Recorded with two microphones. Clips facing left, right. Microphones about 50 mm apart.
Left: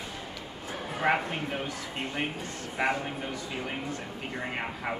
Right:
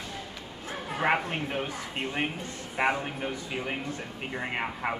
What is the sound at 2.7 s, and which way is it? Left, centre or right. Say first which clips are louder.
Speech: right 2 dB; centre.